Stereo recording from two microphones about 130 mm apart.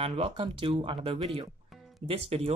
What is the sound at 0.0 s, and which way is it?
Speech, 50° right (ahead or behind).